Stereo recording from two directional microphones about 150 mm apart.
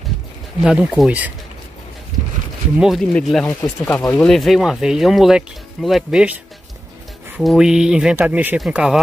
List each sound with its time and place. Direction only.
0.6 s speech: 5° right (ahead or behind)
2.8 s speech: centre (ahead or behind)
7.3 s speech: 5° right (ahead or behind)